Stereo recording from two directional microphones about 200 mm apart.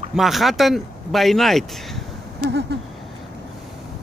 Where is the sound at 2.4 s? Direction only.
55° right (ahead or behind).